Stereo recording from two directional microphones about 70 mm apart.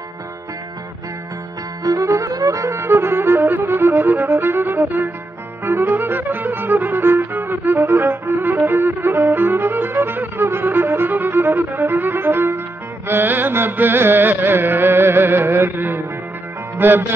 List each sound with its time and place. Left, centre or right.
1.8 s music: right